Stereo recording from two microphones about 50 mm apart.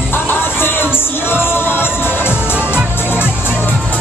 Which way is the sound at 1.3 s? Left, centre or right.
Left.